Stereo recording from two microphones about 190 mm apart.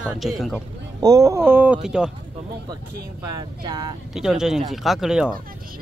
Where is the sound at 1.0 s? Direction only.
20° right (ahead or behind); by 2.0 s 5° right (ahead or behind).